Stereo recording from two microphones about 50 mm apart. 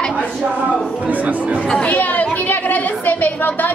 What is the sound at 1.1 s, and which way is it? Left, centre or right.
Speech, right.